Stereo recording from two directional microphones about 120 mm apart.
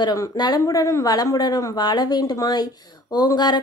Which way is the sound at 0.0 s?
35° left (ahead or behind).